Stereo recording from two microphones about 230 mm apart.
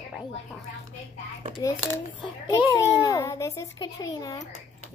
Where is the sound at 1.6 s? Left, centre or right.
Centre.